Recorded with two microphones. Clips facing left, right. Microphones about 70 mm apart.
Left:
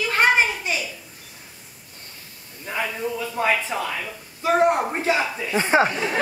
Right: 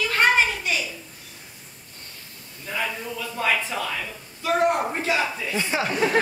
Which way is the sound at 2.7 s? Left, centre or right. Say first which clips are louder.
Left 3 dB; left.